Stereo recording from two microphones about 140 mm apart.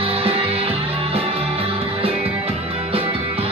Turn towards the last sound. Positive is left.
turn(degrees=-40)  # may be behind; listen again after turning